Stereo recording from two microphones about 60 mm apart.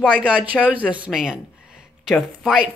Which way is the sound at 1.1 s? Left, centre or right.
Centre.